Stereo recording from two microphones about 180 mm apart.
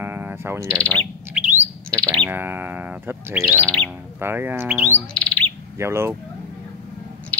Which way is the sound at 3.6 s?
5° left (ahead or behind).